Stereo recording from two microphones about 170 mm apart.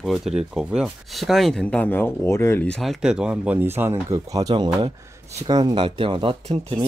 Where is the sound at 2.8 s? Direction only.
Centre (ahead or behind).